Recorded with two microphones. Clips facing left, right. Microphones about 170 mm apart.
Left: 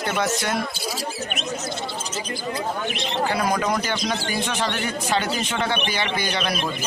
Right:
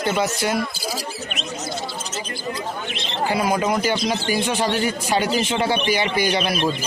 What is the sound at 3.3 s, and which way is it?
A man's voice, 10° right (ahead or behind).